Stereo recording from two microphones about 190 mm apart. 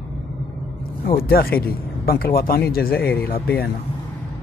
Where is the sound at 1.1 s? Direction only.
50° left (ahead or behind).